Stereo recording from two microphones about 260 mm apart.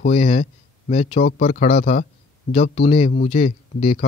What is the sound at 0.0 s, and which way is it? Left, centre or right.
A man's voice, left.